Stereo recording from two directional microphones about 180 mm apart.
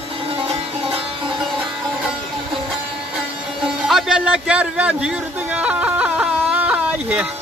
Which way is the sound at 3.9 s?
5° right (ahead or behind).